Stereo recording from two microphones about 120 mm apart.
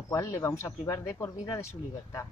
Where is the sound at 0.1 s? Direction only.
25° left (ahead or behind).